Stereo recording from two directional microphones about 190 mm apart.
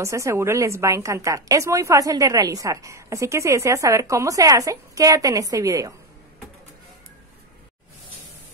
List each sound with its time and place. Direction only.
0.0 s a woman's voice: 15° right (ahead or behind)